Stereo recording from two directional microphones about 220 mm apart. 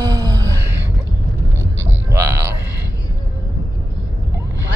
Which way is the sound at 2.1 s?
15° right (ahead or behind).